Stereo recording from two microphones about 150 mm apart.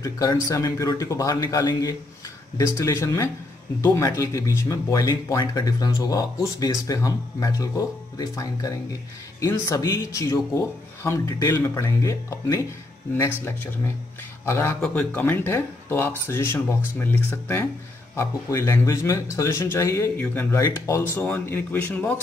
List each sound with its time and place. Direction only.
0.0 s speech: 25° left (ahead or behind)
14.4 s speech: 15° left (ahead or behind)